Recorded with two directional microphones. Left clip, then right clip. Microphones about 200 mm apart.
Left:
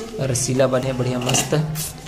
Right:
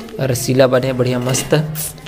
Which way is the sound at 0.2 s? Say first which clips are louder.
Right 6 dB; 15° right (ahead or behind).